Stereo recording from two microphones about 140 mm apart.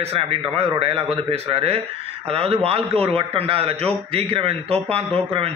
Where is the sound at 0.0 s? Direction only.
45° right (ahead or behind).